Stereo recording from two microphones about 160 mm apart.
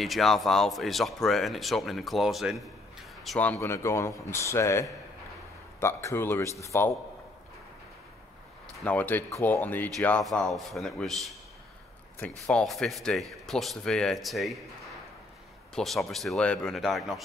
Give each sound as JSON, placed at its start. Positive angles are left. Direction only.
{"t": 0.0, "sound": "speech", "side_deg": 0}
{"t": 3.3, "sound": "a man's voice", "side_deg": 10}
{"t": 8.7, "sound": "a man's voice", "side_deg": 10}
{"t": 15.7, "sound": "speech", "side_deg": 0}